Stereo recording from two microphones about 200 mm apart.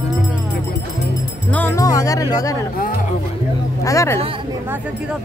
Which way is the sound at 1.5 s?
10° left (ahead or behind).